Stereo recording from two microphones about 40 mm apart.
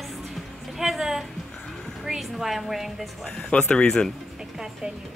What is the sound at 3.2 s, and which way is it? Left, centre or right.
Speech, centre.